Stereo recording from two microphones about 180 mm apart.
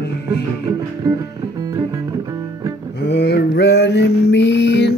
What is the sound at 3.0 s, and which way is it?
Mantra, 65° left (ahead or behind).